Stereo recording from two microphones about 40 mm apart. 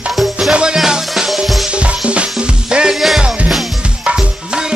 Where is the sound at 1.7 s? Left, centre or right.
Right.